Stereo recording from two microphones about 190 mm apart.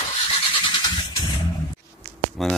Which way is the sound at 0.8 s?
25° left (ahead or behind).